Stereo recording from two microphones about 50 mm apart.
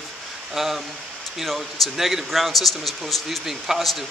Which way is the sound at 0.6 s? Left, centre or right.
Centre.